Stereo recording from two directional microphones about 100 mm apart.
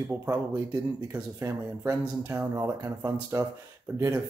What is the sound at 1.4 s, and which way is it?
Speech, 25° right (ahead or behind).